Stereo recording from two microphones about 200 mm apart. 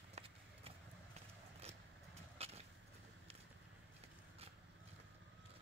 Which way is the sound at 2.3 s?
30° right (ahead or behind).